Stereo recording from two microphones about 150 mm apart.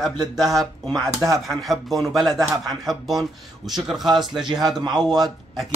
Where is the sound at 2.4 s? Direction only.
25° right (ahead or behind).